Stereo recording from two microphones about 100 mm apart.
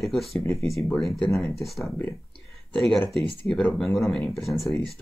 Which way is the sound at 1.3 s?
30° left (ahead or behind).